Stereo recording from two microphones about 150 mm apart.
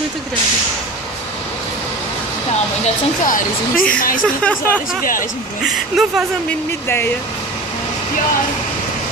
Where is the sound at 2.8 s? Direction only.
65° left (ahead or behind).